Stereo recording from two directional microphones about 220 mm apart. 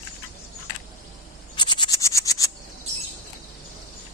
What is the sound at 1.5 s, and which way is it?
Frog, 20° left (ahead or behind).